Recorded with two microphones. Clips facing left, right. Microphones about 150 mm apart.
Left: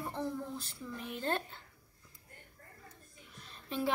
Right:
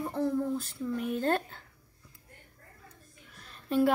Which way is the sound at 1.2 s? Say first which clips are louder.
Right 5 dB; 45° right (ahead or behind).